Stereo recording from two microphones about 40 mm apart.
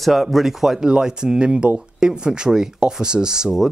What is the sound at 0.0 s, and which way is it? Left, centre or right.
Speech, centre.